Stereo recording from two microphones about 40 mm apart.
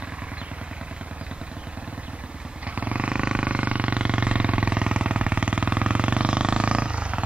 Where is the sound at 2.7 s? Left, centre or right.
Right.